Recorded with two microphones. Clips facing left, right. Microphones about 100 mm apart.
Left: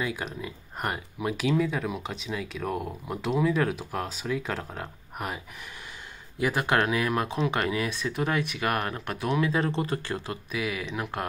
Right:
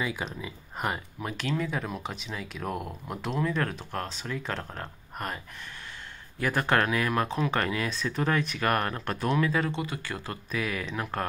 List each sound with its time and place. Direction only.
0.0 s speech: centre (ahead or behind)
6.4 s speech: 15° left (ahead or behind)
9.3 s speech: 20° left (ahead or behind)
9.7 s speech: 35° left (ahead or behind)
10.1 s speech: 20° left (ahead or behind)